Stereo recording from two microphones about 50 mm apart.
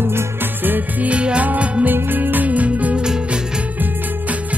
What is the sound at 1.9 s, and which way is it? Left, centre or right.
Music, right.